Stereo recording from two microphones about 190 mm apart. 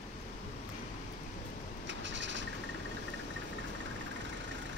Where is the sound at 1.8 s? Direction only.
70° right (ahead or behind).